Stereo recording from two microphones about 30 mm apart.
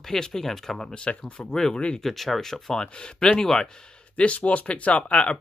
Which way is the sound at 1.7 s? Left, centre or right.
Left.